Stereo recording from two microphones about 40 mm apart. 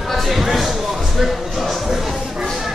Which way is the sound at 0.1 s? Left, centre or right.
Centre.